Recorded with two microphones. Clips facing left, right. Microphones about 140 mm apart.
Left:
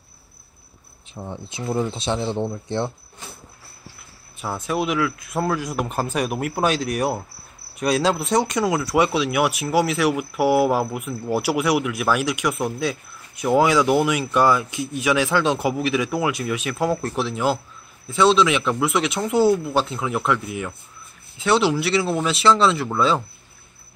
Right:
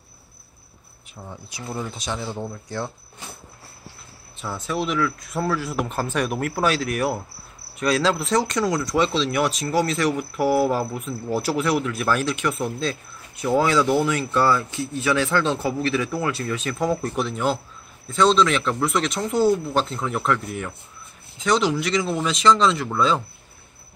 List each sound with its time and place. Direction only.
1.1 s speech: 25° left (ahead or behind)
4.6 s speech: 10° left (ahead or behind)
8.5 s speech: 10° left (ahead or behind)